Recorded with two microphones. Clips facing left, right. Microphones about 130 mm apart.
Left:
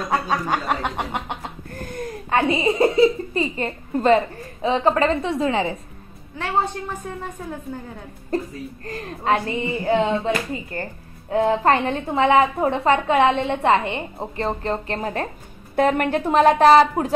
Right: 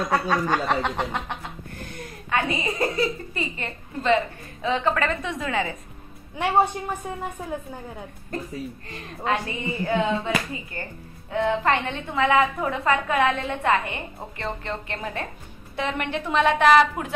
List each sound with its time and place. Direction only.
0.3 s speech: 15° left (ahead or behind)
1.9 s a child's voice: 45° left (ahead or behind); by 3.4 s 25° left (ahead or behind)
3.5 s speech: 40° left (ahead or behind)
6.3 s a woman's voice: 15° right (ahead or behind)
8.8 s speech: 40° left (ahead or behind)
15.7 s speech: 50° left (ahead or behind)